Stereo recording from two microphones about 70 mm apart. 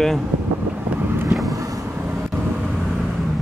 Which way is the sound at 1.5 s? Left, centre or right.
Right.